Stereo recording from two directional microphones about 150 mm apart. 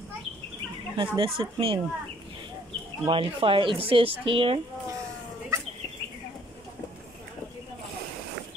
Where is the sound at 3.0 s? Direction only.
35° right (ahead or behind).